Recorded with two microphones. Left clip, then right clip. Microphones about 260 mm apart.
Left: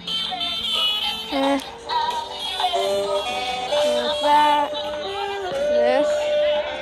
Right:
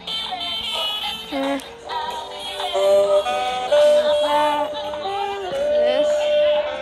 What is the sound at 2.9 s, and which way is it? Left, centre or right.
Music, centre.